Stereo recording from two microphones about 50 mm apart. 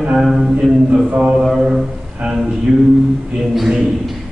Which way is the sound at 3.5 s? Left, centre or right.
Centre.